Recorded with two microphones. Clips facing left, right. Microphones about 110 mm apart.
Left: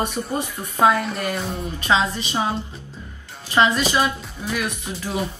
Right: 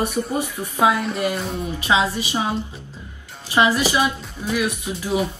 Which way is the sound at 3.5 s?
15° right (ahead or behind).